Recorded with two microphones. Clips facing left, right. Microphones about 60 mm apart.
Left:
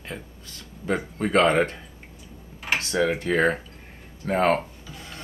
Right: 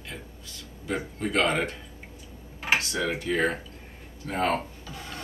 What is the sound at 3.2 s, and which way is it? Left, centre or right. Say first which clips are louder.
Speech: left 4 dB; left.